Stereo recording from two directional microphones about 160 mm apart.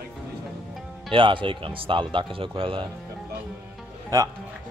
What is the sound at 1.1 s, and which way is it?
Speech, 30° right (ahead or behind).